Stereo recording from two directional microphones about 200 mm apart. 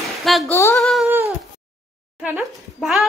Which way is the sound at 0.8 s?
Centre (ahead or behind).